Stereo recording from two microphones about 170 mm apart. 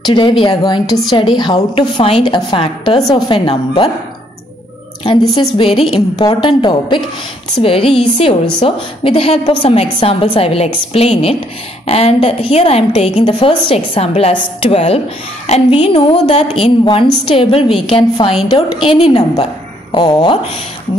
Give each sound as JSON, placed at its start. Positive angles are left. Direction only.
{"t": 0.0, "sound": "a woman's voice", "side_deg": 25}
{"t": 5.6, "sound": "a woman's voice", "side_deg": 35}